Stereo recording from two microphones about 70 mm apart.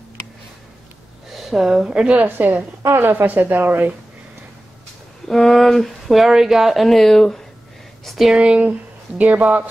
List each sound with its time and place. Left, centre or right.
1.3 s a woman's voice: centre
2.1 s a woman's voice: right
5.3 s speech: centre
8.3 s a woman's voice: centre